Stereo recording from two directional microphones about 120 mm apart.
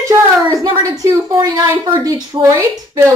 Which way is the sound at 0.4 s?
30° right (ahead or behind).